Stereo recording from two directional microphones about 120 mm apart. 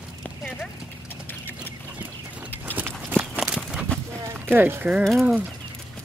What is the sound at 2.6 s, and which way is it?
Walk, 15° right (ahead or behind).